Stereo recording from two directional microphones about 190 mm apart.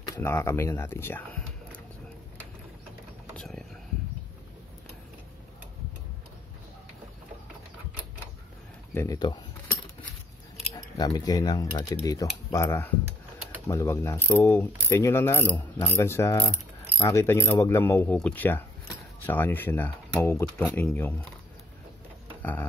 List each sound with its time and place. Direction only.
0.0 s speech: 15° left (ahead or behind)
3.3 s vehicle: 5° left (ahead or behind)
8.9 s mechanisms: 15° left (ahead or behind)
10.7 s speech: 20° left (ahead or behind)
12.1 s mechanisms: 20° left (ahead or behind)
22.4 s a sound: 10° left (ahead or behind)